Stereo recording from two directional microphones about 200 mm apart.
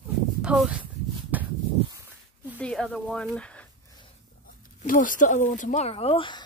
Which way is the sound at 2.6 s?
5° left (ahead or behind).